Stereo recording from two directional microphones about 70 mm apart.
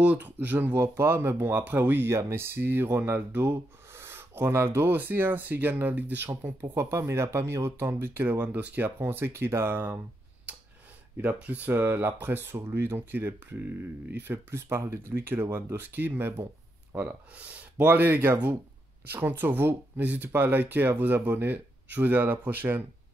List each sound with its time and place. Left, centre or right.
0.0 s speech: right
6.8 s speech: right
11.1 s speech: centre
16.9 s speech: right